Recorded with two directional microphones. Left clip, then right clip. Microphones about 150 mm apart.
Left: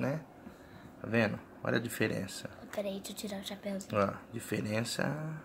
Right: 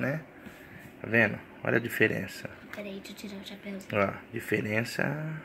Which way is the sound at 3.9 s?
10° right (ahead or behind).